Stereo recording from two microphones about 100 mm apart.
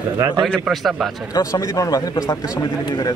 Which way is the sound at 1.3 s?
35° left (ahead or behind).